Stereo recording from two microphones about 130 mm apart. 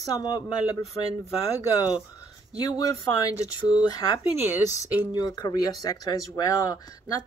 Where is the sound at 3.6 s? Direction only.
30° left (ahead or behind).